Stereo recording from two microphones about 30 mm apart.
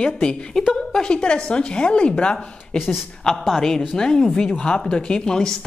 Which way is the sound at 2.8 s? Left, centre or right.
Centre.